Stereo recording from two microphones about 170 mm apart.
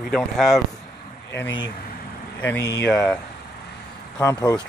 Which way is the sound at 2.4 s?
15° left (ahead or behind).